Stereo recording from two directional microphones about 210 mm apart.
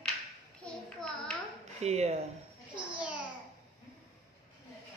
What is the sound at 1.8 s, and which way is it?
Speech, 30° right (ahead or behind).